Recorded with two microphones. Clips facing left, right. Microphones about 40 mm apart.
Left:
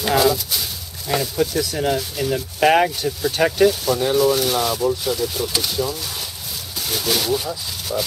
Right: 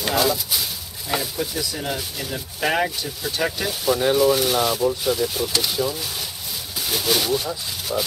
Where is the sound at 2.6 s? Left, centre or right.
Centre.